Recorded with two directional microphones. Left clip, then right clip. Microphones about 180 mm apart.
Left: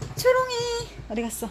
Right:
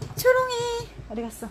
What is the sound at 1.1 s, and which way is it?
Speech, 20° left (ahead or behind).